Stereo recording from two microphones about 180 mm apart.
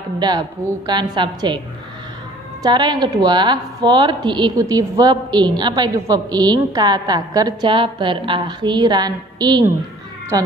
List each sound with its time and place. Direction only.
0.2 s a woman's voice: 25° right (ahead or behind)
2.6 s a woman's voice: 25° right (ahead or behind)